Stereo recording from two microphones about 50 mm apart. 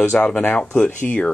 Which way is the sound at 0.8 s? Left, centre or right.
Left.